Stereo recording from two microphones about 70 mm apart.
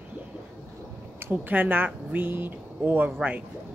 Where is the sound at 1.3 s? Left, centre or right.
Right.